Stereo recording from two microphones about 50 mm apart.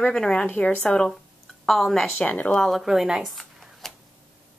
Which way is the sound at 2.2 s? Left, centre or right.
Left.